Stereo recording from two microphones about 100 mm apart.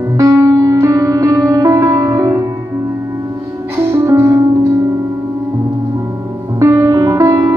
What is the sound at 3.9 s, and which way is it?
Music, 30° right (ahead or behind).